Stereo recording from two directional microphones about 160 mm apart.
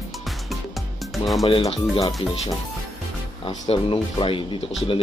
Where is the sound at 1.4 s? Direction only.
40° left (ahead or behind).